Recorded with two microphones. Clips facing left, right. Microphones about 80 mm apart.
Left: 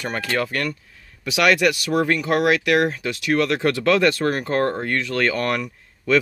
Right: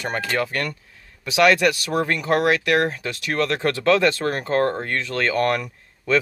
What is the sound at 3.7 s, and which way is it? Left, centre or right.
Speech, right.